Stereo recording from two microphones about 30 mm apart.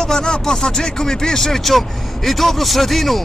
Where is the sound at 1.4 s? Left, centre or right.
Centre.